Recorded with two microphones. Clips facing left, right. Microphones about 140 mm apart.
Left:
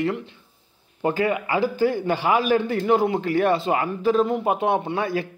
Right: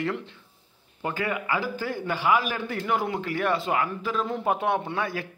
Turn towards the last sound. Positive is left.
turn(degrees=25)  # may be behind; listen again after turning